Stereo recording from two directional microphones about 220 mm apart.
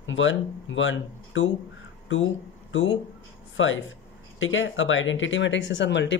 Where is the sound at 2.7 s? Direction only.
60° left (ahead or behind).